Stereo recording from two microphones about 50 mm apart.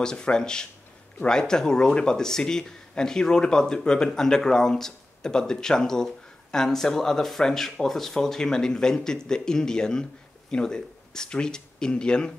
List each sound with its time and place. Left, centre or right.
0.0 s speech: centre